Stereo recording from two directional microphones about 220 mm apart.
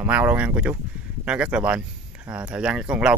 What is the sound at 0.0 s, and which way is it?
Speech, 5° right (ahead or behind).